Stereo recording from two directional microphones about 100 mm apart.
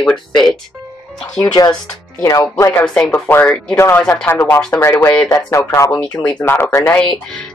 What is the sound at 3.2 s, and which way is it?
Speech, 20° left (ahead or behind).